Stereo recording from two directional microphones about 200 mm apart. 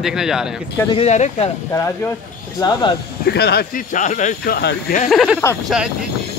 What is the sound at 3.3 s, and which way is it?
Speech, 55° left (ahead or behind).